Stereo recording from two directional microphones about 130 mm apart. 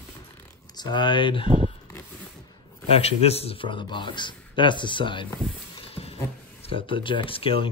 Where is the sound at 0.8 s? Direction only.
35° left (ahead or behind).